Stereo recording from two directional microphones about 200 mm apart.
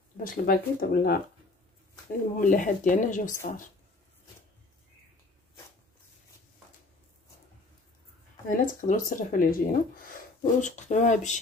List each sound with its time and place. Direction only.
0.2 s speech: 45° left (ahead or behind)
2.4 s speech: 40° left (ahead or behind)
8.5 s speech: 40° left (ahead or behind)